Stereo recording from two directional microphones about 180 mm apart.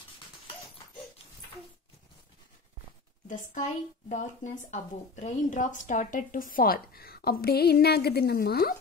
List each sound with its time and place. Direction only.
4.1 s speech: 40° left (ahead or behind); by 8.7 s 60° left (ahead or behind)